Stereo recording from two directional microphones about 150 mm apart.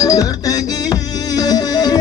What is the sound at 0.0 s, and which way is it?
Music, 25° left (ahead or behind).